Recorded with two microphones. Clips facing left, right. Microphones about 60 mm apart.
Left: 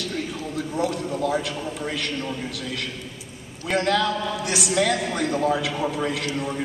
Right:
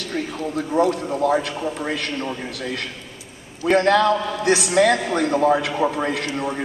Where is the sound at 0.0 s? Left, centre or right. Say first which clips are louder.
Right 2 dB; right.